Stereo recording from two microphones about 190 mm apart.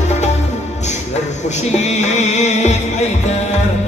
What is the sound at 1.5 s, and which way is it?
Music, 35° left (ahead or behind).